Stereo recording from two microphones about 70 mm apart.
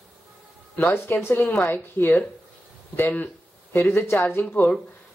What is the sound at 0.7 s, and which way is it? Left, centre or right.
Speech, left.